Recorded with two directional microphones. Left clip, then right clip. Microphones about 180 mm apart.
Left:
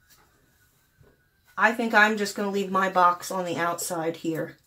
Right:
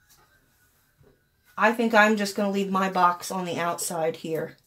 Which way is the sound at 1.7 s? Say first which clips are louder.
Right 2 dB; 45° right (ahead or behind).